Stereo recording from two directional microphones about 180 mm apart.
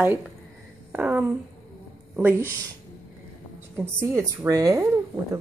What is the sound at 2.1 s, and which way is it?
Speech, 10° right (ahead or behind).